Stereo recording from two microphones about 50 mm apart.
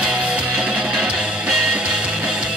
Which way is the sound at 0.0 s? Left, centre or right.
Centre.